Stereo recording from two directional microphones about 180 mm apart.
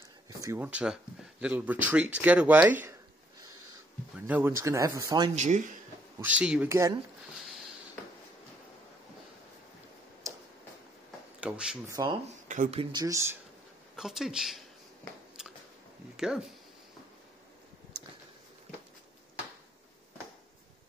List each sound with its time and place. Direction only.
0.4 s speech: 10° right (ahead or behind)
4.3 s speech: 10° right (ahead or behind)
5.3 s speech: 40° right (ahead or behind)
6.2 s speech: 5° right (ahead or behind)
11.4 s speech: 5° right (ahead or behind)
11.9 s speech: 25° right (ahead or behind)
12.3 s speech: 40° right (ahead or behind)
12.9 s speech: 20° right (ahead or behind)
13.9 s speech: centre (ahead or behind)
15.4 s biting: 5° right (ahead or behind)
16.2 s speech: 5° right (ahead or behind)